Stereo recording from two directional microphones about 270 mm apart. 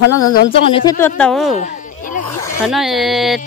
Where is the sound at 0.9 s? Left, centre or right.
Centre.